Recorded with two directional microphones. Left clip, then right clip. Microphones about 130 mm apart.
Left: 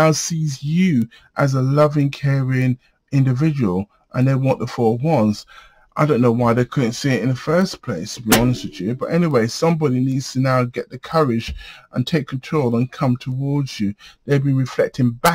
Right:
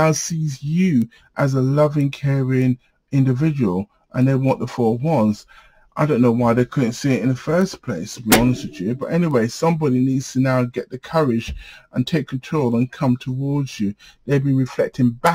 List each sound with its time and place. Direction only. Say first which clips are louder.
0.0 s speech: left 2 dB; 30° left (ahead or behind)